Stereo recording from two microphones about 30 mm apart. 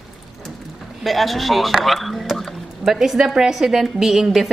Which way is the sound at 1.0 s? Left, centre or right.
Centre.